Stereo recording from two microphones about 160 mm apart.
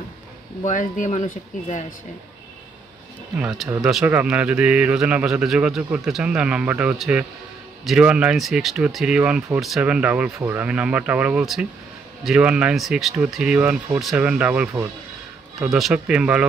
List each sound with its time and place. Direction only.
0.7 s speech: 50° left (ahead or behind)
3.3 s speech: 5° right (ahead or behind)